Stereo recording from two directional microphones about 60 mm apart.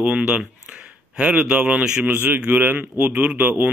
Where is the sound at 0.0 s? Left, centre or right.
Centre.